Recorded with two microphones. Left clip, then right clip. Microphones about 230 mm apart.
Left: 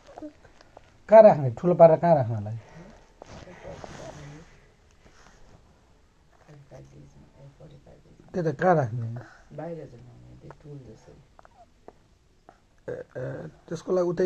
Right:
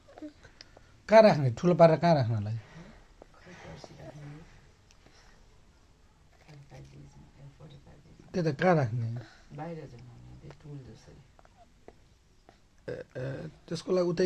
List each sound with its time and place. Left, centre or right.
1.0 s speech: right
8.3 s speech: centre
12.4 s speech: centre